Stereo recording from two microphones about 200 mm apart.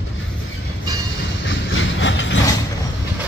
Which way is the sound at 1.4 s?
70° left (ahead or behind).